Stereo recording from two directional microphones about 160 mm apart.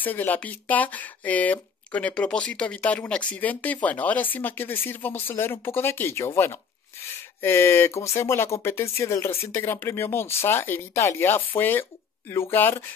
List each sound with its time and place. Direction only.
0.0 s speech: 10° left (ahead or behind)